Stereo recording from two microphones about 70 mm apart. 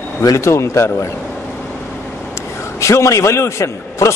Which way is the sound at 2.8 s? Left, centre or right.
Left.